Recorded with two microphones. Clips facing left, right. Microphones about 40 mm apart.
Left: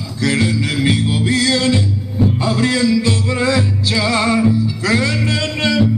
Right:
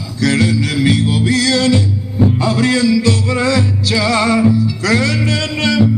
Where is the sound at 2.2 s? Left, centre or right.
Centre.